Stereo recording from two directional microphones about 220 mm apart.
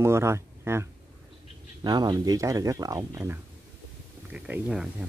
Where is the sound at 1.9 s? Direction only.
20° right (ahead or behind).